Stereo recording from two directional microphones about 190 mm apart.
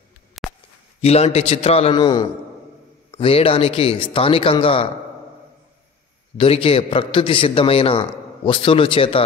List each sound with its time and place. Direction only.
0.4 s a sound: centre (ahead or behind)
1.0 s a man's voice: 35° left (ahead or behind)
6.3 s a man's voice: 30° left (ahead or behind)